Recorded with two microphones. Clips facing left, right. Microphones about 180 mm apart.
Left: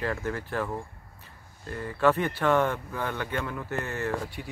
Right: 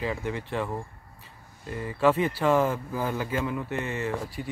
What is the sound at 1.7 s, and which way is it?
Speech, 5° right (ahead or behind).